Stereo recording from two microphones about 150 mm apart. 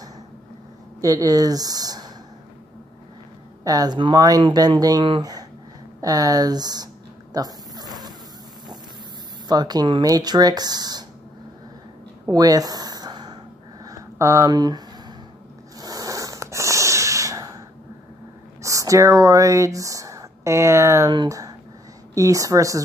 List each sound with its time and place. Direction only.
1.0 s speech: 25° right (ahead or behind)
3.6 s speech: 25° right (ahead or behind)
7.3 s dog: 25° right (ahead or behind)
9.5 s speech: 30° right (ahead or behind)
12.3 s a sound: 25° right (ahead or behind)
15.8 s snort: 25° right (ahead or behind)
18.6 s speech: 20° right (ahead or behind)